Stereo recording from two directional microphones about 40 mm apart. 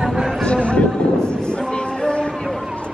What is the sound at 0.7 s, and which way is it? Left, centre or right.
Horse, left.